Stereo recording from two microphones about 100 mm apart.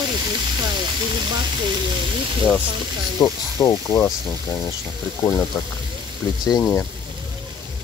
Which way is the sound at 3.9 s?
25° left (ahead or behind).